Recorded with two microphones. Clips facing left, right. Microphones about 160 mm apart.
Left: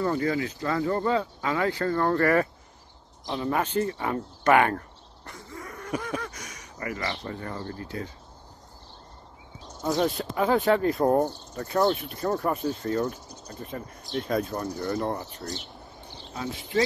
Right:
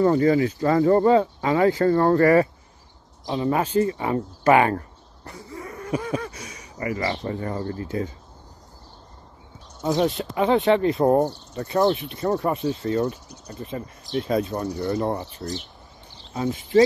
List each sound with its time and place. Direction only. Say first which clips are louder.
0.1 s speech: right 8 dB; 30° right (ahead or behind)
3.3 s speech: right 4 dB; 15° right (ahead or behind)
9.8 s speech: right 3 dB; centre (ahead or behind)
14.8 s speech: right 4 dB; 15° right (ahead or behind)